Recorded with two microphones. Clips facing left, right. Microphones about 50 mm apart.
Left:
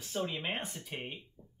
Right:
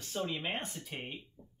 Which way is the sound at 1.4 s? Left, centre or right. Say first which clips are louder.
Right 1 dB; right.